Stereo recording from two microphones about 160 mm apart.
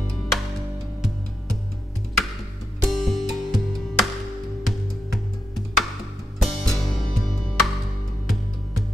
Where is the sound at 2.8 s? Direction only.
Centre (ahead or behind).